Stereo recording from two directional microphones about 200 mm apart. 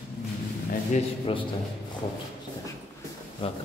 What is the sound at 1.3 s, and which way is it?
Speech, 25° left (ahead or behind).